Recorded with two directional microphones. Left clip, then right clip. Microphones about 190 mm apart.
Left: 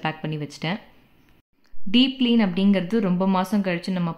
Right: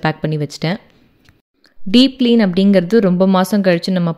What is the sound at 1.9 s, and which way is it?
Speech, 40° right (ahead or behind).